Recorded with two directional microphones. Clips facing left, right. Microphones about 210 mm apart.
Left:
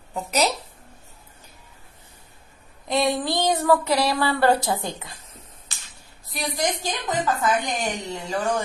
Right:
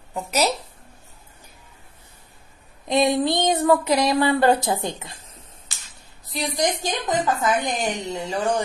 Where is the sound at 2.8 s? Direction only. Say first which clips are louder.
Right 3 dB; 20° right (ahead or behind).